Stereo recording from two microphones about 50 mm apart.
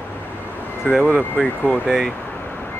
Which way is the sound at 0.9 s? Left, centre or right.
Centre.